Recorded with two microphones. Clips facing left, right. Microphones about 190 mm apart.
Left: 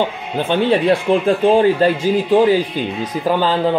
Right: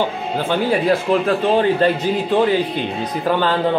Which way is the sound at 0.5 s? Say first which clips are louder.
Left 3 dB; 25° left (ahead or behind).